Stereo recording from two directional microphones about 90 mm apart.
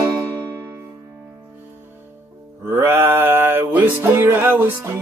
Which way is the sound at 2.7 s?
30° right (ahead or behind).